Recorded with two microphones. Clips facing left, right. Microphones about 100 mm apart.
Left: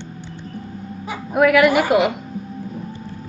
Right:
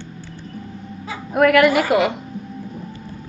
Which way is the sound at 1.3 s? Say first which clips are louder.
Even; centre (ahead or behind).